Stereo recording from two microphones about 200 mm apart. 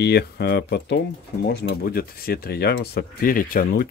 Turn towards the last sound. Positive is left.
turn(degrees=45)  # may be behind; listen again after turning